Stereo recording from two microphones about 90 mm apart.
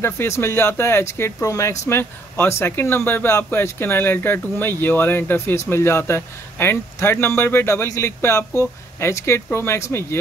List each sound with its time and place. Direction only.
0.0 s speech: 30° left (ahead or behind)